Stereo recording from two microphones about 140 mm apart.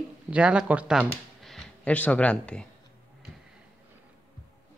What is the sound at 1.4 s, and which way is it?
Speech, 5° left (ahead or behind).